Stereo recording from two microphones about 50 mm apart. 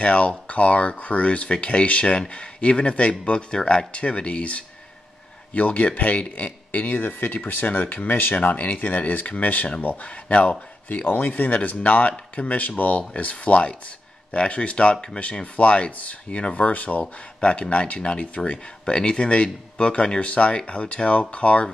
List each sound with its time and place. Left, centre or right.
0.0 s speech: left
11.1 s speech: left